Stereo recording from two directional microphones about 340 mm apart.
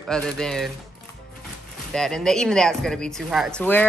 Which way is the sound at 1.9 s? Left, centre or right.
Centre.